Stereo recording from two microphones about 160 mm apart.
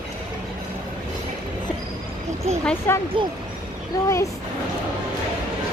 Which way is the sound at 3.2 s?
30° right (ahead or behind).